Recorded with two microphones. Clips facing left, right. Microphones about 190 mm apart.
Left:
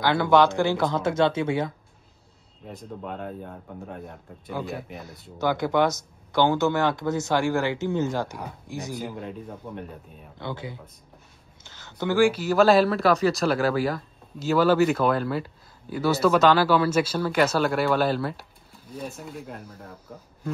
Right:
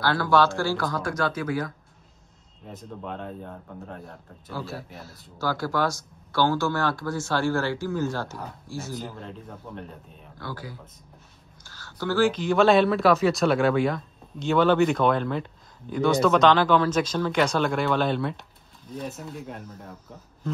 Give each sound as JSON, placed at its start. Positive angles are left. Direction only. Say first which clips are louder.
{"t": 0.0, "sound": "speech", "louder": "left 2 dB", "side_deg": 20}
{"t": 2.6, "sound": "speech", "louder": "left 1 dB", "side_deg": 0}
{"t": 4.1, "sound": "speech", "louder": "left 3 dB", "side_deg": 15}
{"t": 10.3, "sound": "speech", "louder": "left 3 dB", "side_deg": 25}